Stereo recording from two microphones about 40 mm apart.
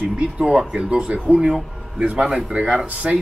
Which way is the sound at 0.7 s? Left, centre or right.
Right.